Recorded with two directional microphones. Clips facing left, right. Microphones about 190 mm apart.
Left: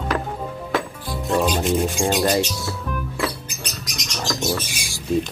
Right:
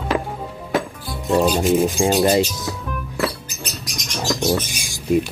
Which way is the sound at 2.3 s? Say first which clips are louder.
Right 3 dB; 20° right (ahead or behind).